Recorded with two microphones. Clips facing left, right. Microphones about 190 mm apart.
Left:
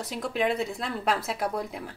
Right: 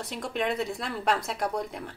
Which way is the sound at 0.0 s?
Centre (ahead or behind).